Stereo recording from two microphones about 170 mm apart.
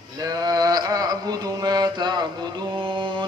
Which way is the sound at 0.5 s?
25° right (ahead or behind).